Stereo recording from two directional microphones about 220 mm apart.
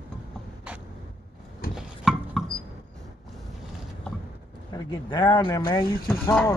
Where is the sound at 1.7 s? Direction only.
Centre (ahead or behind).